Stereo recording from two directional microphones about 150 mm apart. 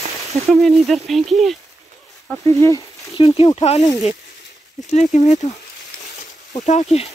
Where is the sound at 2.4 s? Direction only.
20° left (ahead or behind).